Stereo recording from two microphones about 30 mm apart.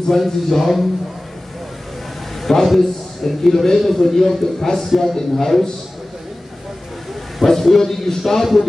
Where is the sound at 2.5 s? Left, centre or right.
Centre.